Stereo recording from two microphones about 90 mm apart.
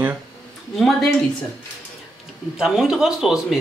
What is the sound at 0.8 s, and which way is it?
Speech, centre (ahead or behind).